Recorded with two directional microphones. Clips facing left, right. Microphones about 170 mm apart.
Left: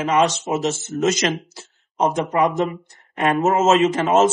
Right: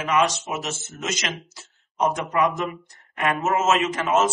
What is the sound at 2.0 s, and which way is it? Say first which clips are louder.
Speech: left 3 dB; 25° left (ahead or behind).